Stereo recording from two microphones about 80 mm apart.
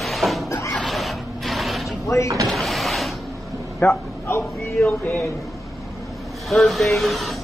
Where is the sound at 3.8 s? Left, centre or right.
Left.